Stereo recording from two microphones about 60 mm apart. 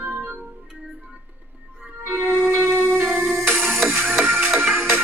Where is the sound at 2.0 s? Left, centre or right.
Right.